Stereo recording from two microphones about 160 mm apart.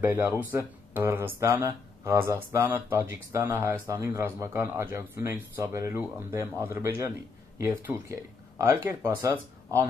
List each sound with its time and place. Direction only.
0.0 s speech: 15° right (ahead or behind)